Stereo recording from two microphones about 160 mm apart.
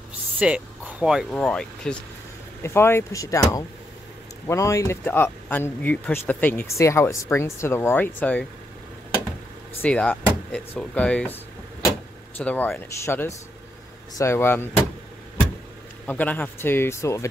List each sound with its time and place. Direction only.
0.4 s speech: 10° right (ahead or behind)
1.3 s speech: 10° left (ahead or behind)
9.8 s speech: 5° left (ahead or behind)
12.4 s speech: 10° left (ahead or behind)
16.1 s speech: 10° left (ahead or behind)